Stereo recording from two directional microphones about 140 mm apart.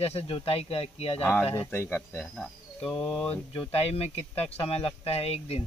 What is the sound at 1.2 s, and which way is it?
Speech, 15° left (ahead or behind).